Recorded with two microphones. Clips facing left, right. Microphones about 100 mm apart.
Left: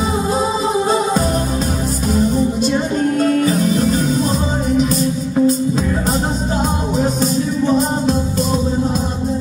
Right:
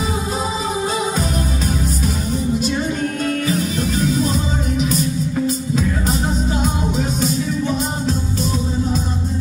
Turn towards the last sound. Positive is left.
turn(degrees=40)  # may be behind; listen again after turning